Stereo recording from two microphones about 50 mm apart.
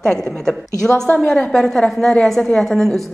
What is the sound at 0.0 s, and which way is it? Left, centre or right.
A woman's voice, centre.